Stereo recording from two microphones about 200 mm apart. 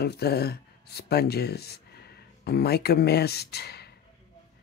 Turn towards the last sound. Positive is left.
turn(degrees=55)  # may be behind; listen again after turning